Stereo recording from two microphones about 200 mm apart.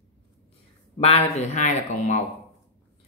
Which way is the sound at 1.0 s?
30° left (ahead or behind).